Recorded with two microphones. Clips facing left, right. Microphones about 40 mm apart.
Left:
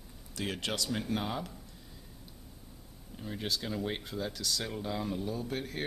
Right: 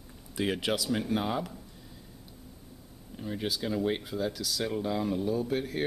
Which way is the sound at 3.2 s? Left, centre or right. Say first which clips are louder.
Right 3 dB; centre.